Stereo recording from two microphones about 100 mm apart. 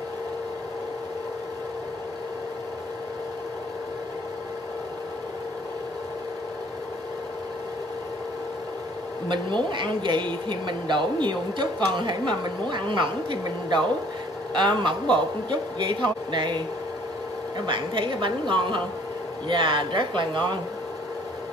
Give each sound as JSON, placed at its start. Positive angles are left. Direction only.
{"t": 9.3, "sound": "speech", "side_deg": -50}